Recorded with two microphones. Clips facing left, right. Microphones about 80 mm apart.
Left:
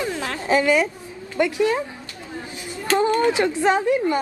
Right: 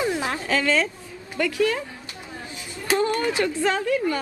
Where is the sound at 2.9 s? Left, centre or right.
Left.